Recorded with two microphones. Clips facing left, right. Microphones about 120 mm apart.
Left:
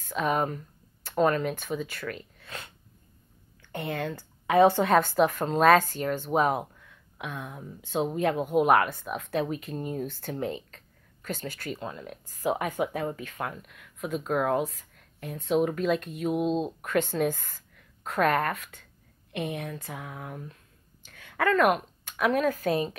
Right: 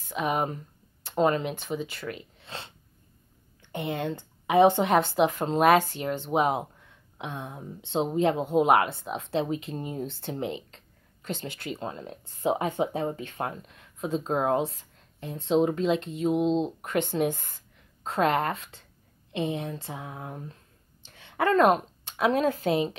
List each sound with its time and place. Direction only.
0.0 s a woman's voice: 15° right (ahead or behind)